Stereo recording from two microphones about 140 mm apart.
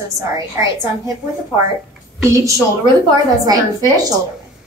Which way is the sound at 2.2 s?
20° right (ahead or behind).